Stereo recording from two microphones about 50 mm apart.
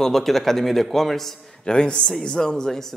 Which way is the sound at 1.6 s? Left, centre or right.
Centre.